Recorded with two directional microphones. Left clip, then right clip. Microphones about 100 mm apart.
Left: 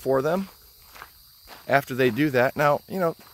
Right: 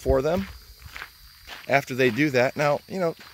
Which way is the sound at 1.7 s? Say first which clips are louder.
Even; 5° left (ahead or behind).